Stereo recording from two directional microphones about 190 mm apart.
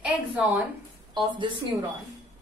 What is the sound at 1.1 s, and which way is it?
Speech, 25° right (ahead or behind).